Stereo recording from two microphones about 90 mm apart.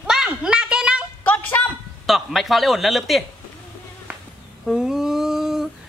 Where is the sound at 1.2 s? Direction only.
20° left (ahead or behind).